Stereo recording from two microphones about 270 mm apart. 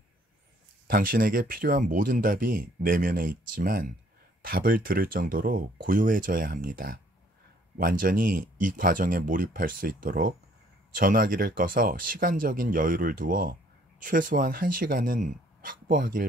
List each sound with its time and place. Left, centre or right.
0.8 s speech: right